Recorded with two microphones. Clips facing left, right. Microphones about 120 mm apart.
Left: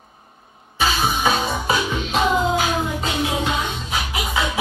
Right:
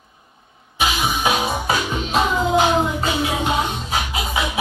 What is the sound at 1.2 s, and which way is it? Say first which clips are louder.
Music: right 1 dB; 10° right (ahead or behind).